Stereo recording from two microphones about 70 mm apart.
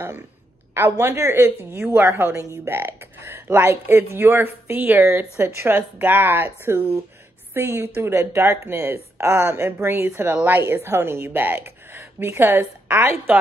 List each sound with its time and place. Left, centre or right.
0.9 s speech: right
8.5 s speech: right